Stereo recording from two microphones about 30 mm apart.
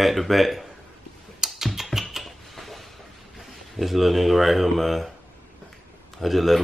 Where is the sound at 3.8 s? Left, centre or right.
Centre.